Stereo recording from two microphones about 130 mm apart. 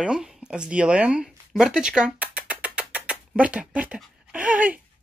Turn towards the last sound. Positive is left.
turn(degrees=-10)  # may be behind; listen again after turning